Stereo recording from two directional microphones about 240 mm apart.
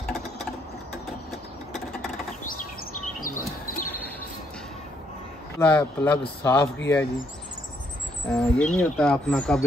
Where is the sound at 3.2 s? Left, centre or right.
Left.